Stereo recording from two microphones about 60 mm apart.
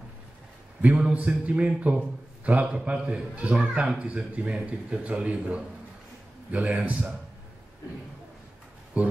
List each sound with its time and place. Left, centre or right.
0.8 s a man's voice: right
9.0 s a man's voice: right